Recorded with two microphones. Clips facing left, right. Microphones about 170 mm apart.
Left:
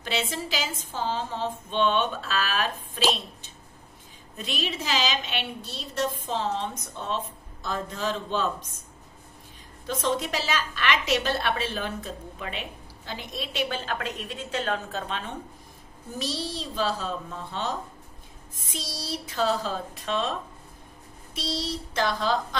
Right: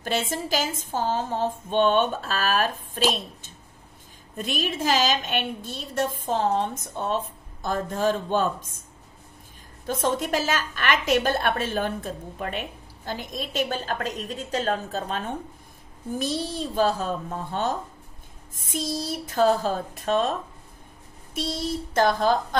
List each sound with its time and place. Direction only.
0.0 s a woman's voice: 45° right (ahead or behind)
9.8 s a woman's voice: 50° right (ahead or behind)
21.4 s a woman's voice: 50° right (ahead or behind)